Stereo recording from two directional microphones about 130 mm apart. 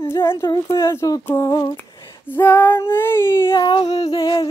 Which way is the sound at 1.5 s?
30° left (ahead or behind).